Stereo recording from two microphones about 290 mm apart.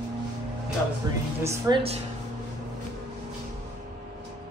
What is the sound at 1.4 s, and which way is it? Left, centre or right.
Speech, centre.